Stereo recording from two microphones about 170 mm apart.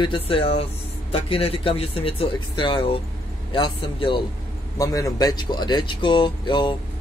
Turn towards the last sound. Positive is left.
turn(degrees=25)  # may be behind; listen again after turning